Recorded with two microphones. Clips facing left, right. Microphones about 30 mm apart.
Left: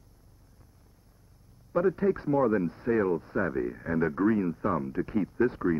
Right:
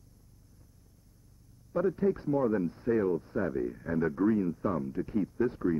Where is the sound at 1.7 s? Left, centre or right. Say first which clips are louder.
Left 3 dB; left.